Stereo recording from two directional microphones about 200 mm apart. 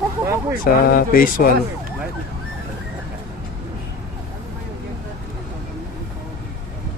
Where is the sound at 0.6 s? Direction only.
45° left (ahead or behind).